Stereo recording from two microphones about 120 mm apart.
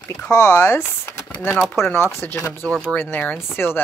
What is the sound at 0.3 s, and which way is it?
Speech, 30° left (ahead or behind).